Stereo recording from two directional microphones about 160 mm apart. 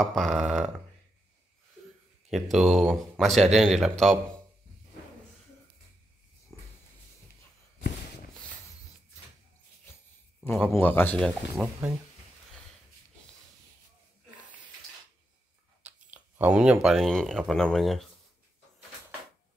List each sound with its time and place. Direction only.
0.0 s speech: centre (ahead or behind)
2.2 s speech: centre (ahead or behind)
6.5 s a sound: 20° left (ahead or behind)
10.4 s speech: 15° left (ahead or behind)
15.8 s a sound: 10° right (ahead or behind)
16.8 s speech: centre (ahead or behind)